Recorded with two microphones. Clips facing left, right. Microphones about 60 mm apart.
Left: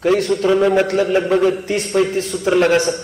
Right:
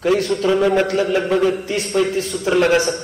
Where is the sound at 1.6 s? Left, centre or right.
Left.